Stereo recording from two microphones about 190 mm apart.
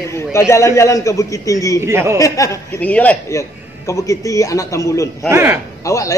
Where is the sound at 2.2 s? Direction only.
15° left (ahead or behind).